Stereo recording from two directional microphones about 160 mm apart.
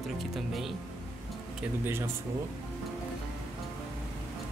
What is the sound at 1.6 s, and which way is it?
Speech, 15° right (ahead or behind).